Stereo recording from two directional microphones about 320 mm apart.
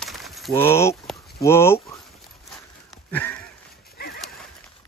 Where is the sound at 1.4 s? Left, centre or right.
Centre.